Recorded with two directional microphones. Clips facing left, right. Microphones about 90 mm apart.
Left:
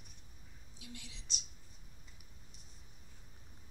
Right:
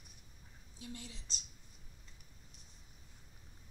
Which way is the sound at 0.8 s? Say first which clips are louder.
Right 4 dB; 40° right (ahead or behind).